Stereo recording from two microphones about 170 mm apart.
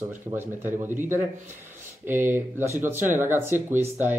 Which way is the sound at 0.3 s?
15° right (ahead or behind).